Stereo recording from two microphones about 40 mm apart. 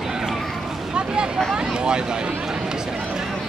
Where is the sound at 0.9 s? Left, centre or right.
Right.